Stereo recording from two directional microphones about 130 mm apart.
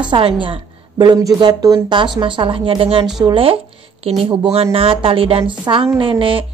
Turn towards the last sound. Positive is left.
turn(degrees=-45)  # may be behind; listen again after turning